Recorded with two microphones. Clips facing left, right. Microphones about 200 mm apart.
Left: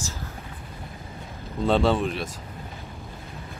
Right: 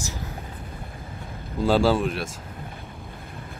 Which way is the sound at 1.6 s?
Centre (ahead or behind).